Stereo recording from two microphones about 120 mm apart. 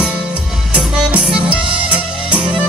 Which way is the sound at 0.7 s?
10° right (ahead or behind).